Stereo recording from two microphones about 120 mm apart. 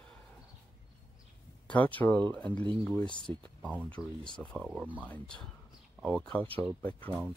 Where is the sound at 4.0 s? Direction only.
5° right (ahead or behind).